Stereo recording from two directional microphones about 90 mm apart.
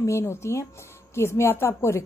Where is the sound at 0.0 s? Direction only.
30° left (ahead or behind).